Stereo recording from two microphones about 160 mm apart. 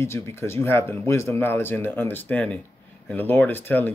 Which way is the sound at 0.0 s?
15° left (ahead or behind).